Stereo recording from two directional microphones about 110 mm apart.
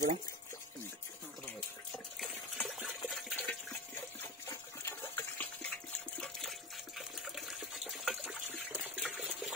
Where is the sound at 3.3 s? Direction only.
15° left (ahead or behind).